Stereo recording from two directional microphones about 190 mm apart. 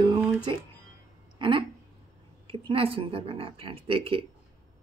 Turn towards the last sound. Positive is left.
turn(degrees=-30)  # may be behind; listen again after turning